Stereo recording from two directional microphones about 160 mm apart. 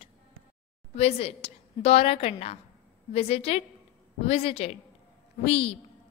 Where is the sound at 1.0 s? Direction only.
40° left (ahead or behind).